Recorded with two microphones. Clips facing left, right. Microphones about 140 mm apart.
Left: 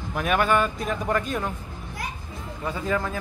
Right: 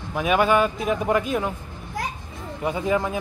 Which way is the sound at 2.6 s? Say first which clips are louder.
Right 4 dB; 15° right (ahead or behind).